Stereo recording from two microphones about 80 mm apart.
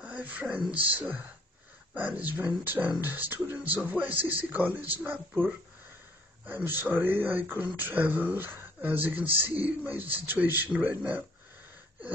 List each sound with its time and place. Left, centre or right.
0.0 s speech: centre
6.4 s speech: right